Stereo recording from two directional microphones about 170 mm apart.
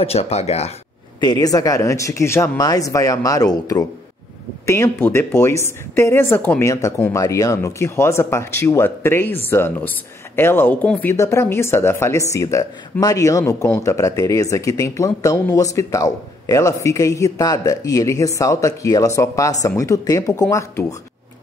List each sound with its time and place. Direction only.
0.0 s speech: 40° left (ahead or behind)
1.2 s speech: 25° left (ahead or behind)